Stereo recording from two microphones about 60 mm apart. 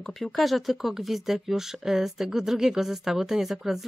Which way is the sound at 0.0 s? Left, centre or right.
Centre.